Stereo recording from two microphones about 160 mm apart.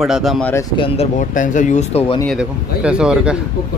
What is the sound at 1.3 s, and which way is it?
Speech, 55° left (ahead or behind).